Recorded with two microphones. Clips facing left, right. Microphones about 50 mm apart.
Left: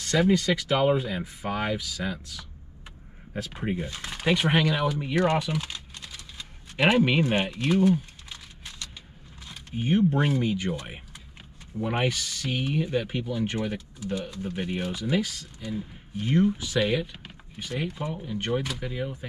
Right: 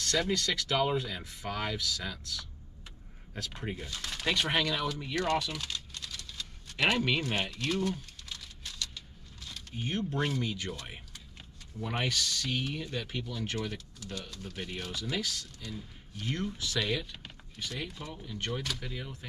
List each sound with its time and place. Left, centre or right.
0.0 s speech: centre